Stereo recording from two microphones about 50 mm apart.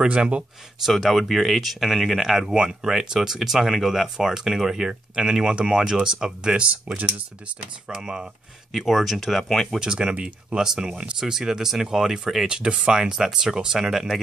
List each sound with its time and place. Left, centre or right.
0.0 s speech: right
1.0 s speech: centre
7.9 s speech: centre
8.7 s speech: centre
9.8 s speech: centre
12.4 s speech: centre